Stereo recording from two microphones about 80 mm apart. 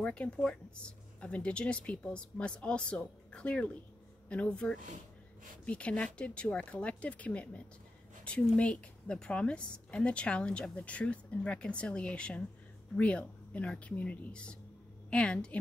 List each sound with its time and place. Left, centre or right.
0.0 s a woman's voice: centre